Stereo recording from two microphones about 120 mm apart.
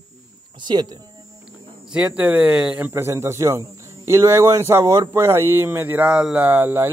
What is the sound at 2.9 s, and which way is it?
Speech, 20° right (ahead or behind).